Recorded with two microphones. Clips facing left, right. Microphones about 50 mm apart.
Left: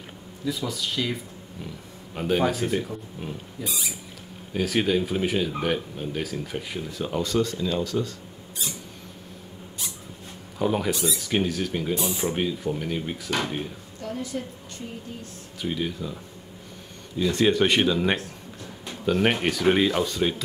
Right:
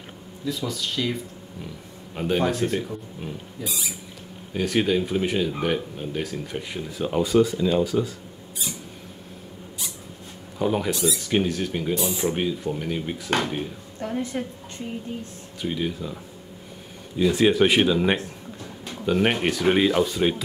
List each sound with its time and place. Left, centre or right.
0.5 s speech: centre
2.1 s speech: centre
10.6 s speech: centre
13.9 s a woman's voice: right
15.6 s speech: centre
17.2 s speech: centre